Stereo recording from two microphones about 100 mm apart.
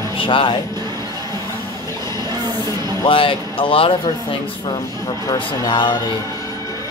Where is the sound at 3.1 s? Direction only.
60° left (ahead or behind).